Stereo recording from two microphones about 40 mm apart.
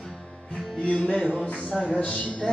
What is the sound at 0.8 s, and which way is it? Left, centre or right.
Music, left.